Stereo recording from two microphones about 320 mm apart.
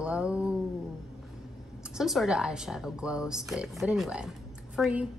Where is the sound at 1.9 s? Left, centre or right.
Centre.